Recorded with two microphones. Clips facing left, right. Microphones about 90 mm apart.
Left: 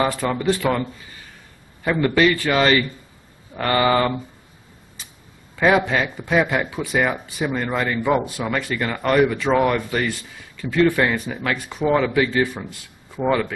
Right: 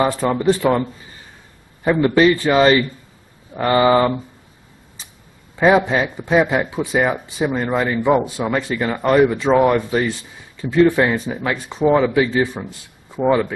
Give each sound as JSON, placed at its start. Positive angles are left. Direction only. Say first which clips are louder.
{"t": 0.0, "sound": "speech", "louder": "right 4 dB", "side_deg": -25}
{"t": 1.9, "sound": "speech", "louder": "right 4 dB", "side_deg": -20}
{"t": 5.6, "sound": "speech", "louder": "right 3 dB", "side_deg": -20}
{"t": 12.5, "sound": "a sound", "louder": "right 3 dB", "side_deg": -30}